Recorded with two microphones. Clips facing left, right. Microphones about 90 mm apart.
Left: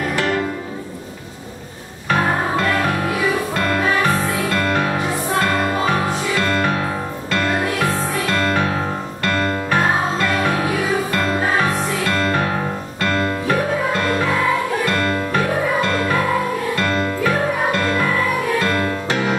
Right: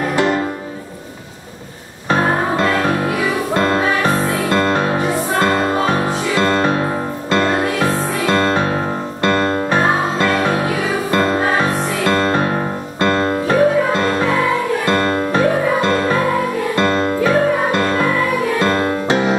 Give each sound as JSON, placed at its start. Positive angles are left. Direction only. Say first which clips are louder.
{"t": 0.1, "sound": "music", "louder": "right 5 dB", "side_deg": -25}
{"t": 3.5, "sound": "music", "louder": "right 3 dB", "side_deg": -25}
{"t": 16.7, "sound": "music", "louder": "right 4 dB", "side_deg": -30}